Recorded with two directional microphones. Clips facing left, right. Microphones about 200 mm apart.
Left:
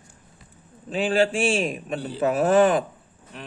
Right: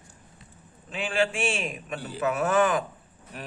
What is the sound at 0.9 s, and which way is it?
A man's voice, 35° left (ahead or behind).